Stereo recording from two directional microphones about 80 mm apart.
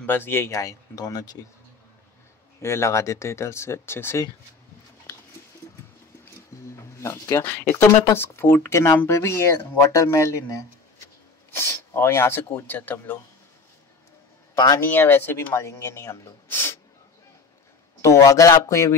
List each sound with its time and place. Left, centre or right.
0.0 s speech: left
2.6 s speech: left
7.0 s speech: left
11.5 s speech: left
14.5 s a sound: left
14.8 s speech: left
18.0 s speech: left